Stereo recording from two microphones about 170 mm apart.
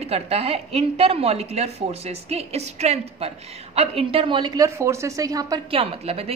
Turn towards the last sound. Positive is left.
turn(degrees=-35)  # may be behind; listen again after turning